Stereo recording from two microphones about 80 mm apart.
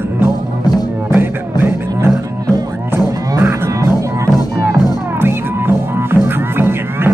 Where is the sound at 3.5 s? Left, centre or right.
Right.